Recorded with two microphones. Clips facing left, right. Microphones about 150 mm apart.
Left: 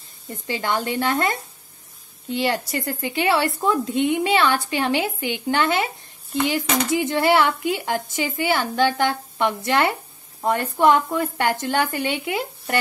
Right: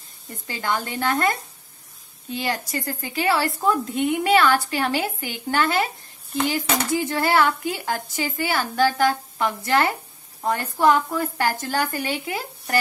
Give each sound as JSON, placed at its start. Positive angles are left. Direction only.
{"t": 0.5, "sound": "a woman's voice", "side_deg": 25}
{"t": 2.4, "sound": "a woman's voice", "side_deg": 25}
{"t": 6.9, "sound": "a woman's voice", "side_deg": 20}